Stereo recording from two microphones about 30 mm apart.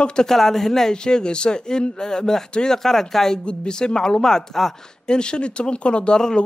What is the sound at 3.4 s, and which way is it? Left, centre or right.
Speech, left.